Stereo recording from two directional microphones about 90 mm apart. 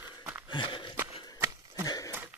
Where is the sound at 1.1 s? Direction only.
30° right (ahead or behind).